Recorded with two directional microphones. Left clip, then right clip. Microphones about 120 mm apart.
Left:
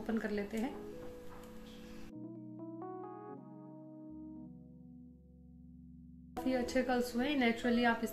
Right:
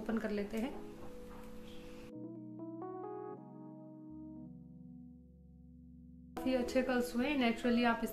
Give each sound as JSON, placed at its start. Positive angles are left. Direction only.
{"t": 0.0, "sound": "a woman's voice", "side_deg": -15}
{"t": 2.1, "sound": "keyboard", "side_deg": 0}
{"t": 4.0, "sound": "music", "side_deg": 0}
{"t": 6.4, "sound": "a woman's voice", "side_deg": -15}